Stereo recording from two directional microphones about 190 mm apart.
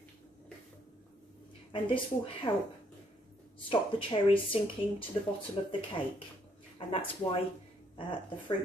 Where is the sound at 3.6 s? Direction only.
25° left (ahead or behind).